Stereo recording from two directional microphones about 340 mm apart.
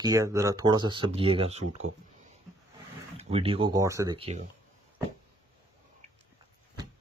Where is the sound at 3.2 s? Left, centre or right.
Centre.